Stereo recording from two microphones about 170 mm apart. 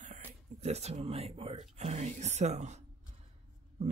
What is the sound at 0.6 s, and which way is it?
Speech, 40° right (ahead or behind).